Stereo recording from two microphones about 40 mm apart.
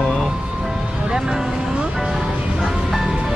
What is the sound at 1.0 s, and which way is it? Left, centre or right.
Speech, centre.